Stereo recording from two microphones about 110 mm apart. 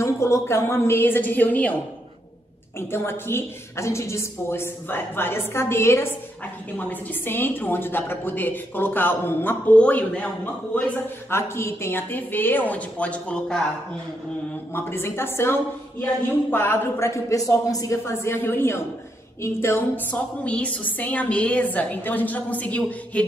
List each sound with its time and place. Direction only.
0.0 s a woman's voice: 25° left (ahead or behind)
2.9 s a woman's voice: 20° left (ahead or behind)
14.7 s a woman's voice: 20° left (ahead or behind)
20.4 s a woman's voice: 10° left (ahead or behind)